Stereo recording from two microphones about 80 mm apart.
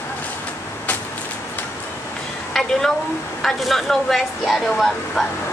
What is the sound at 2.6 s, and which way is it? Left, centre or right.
A woman's voice, centre.